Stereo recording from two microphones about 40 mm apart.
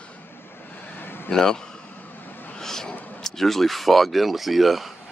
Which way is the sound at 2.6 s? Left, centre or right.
Centre.